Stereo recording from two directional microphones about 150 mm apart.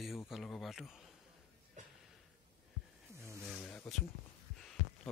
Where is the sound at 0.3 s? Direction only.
Centre (ahead or behind).